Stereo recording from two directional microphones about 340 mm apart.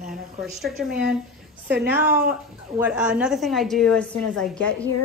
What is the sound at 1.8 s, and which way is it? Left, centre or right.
A woman's voice, centre.